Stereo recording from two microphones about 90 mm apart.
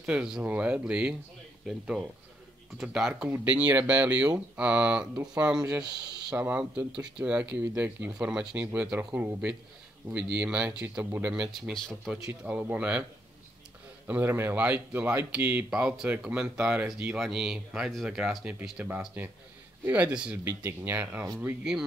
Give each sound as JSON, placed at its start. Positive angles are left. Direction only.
{"t": 0.0, "sound": "speech", "side_deg": -10}
{"t": 6.3, "sound": "speech", "side_deg": -20}
{"t": 8.1, "sound": "speech", "side_deg": -10}
{"t": 11.3, "sound": "speech", "side_deg": -5}
{"t": 11.7, "sound": "speech", "side_deg": 5}
{"t": 12.1, "sound": "speech", "side_deg": -15}
{"t": 14.0, "sound": "speech", "side_deg": -25}
{"t": 15.7, "sound": "speech", "side_deg": -15}